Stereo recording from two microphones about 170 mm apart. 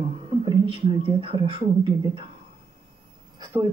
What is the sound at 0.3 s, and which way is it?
Speech, 30° right (ahead or behind).